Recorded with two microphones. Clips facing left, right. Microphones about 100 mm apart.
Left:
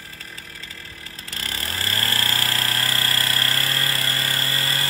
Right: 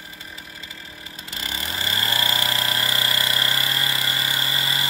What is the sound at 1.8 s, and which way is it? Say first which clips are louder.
Vehicle: right 1 dB; 5° right (ahead or behind).